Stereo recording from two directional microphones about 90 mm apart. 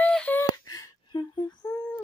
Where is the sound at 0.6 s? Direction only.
45° left (ahead or behind).